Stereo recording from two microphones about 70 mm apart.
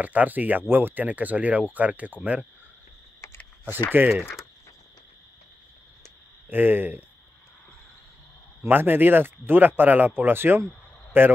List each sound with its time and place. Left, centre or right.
0.0 s speech: right
3.2 s a sound: left
4.0 s speech: right
6.5 s speech: right
8.6 s a man's voice: right